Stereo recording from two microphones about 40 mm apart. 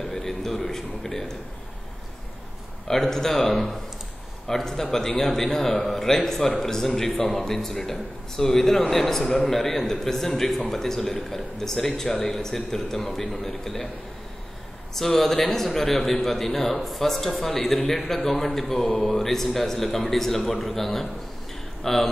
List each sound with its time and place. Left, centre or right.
0.0 s a sound: centre
2.9 s a man's voice: centre
15.0 s a man's voice: centre